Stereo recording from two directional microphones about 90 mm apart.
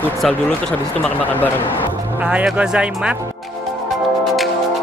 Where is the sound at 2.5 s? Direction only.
10° right (ahead or behind).